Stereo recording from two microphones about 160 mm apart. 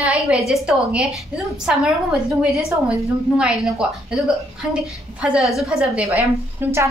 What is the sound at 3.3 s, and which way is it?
A woman's voice, 5° right (ahead or behind).